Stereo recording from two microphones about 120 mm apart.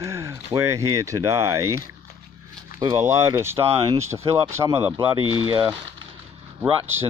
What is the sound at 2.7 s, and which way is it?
Speech, 35° right (ahead or behind).